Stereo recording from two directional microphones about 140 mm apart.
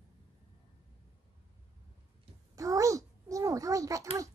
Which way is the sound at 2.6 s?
25° right (ahead or behind).